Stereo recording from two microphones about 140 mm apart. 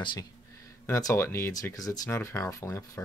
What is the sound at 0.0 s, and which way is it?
Speech, 35° left (ahead or behind).